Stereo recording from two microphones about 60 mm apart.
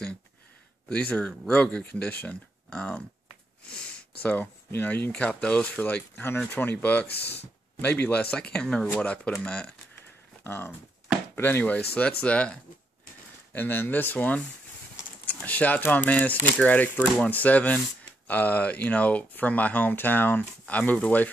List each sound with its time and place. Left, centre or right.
0.8 s speech: centre
4.2 s speech: left
10.4 s speech: left
11.4 s speech: left
13.5 s speech: left